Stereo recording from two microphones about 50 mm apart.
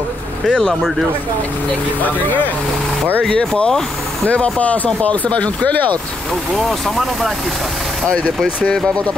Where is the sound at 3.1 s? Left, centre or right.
Left.